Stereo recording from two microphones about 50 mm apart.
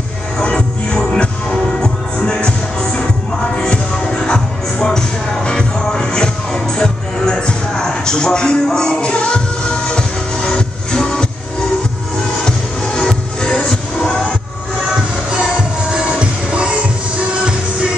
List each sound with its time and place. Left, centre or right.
0.4 s music: left
10.4 s music: centre
12.4 s music: centre
15.9 s music: right